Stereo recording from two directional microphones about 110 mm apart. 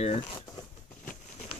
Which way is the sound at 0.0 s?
80° left.